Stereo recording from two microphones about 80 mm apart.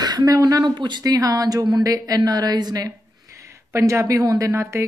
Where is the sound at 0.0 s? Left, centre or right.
Right.